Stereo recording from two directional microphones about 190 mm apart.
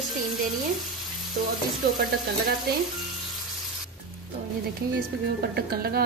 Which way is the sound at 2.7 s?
55° right (ahead or behind).